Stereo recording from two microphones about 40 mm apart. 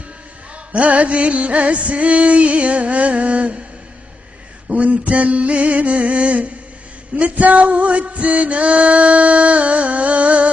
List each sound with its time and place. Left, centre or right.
0.7 s music: right
4.6 s music: right